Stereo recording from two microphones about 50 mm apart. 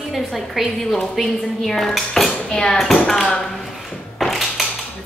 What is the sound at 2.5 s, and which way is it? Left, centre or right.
Speech, centre.